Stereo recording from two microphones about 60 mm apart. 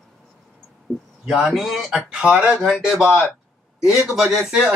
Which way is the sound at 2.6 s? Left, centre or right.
Centre.